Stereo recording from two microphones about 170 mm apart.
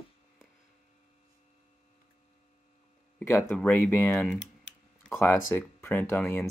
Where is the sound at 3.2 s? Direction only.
10° left (ahead or behind).